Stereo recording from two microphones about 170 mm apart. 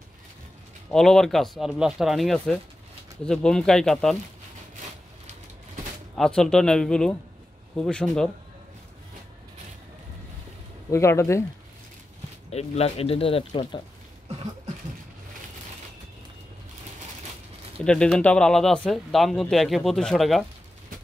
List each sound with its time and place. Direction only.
0.8 s speech: centre (ahead or behind)
6.1 s speech: 5° left (ahead or behind)
10.9 s speech: 15° left (ahead or behind)
12.4 s speech: 40° left (ahead or behind)
17.8 s speech: 5° left (ahead or behind)